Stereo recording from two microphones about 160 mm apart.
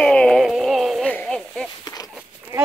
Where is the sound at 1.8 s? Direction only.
25° left (ahead or behind).